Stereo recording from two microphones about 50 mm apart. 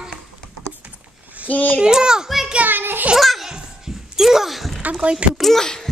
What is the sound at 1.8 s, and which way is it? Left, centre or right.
Speech, centre.